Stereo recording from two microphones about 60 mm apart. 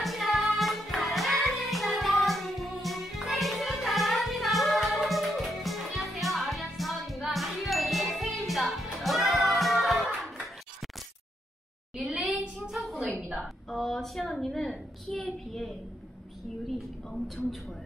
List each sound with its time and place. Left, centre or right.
0.0 s music: centre
11.9 s a sound: centre
17.4 s a man's voice: centre